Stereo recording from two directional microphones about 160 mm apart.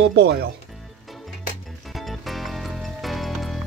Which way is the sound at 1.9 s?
Centre (ahead or behind).